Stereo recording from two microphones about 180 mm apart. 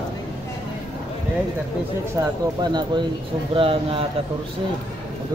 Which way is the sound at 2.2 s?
20° right (ahead or behind).